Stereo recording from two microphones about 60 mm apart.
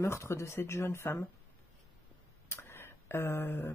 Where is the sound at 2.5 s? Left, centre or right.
Left.